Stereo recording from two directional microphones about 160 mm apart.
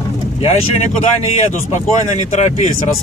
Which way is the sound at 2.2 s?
45° left (ahead or behind).